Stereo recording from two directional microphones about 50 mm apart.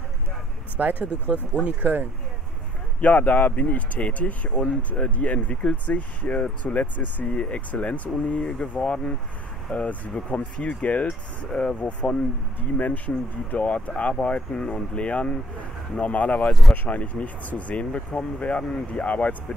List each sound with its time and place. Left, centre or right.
0.7 s speech: right
3.0 s speech: left
3.5 s speech: left
12.5 s speech: left
16.3 s speech: centre
16.7 s speech: left